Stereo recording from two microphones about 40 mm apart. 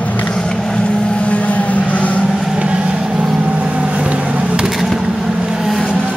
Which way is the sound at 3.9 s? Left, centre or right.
Right.